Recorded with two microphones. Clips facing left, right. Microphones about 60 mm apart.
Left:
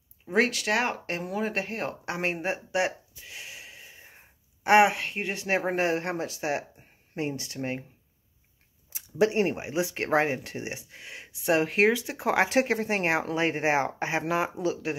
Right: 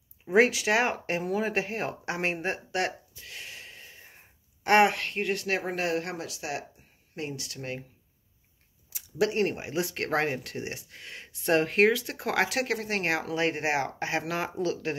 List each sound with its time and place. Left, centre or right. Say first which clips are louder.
0.3 s speech: right 3 dB; centre
5.6 s speech: left 3 dB; left
8.9 s speech: left 3 dB; left
12.4 s speech: left 5 dB; left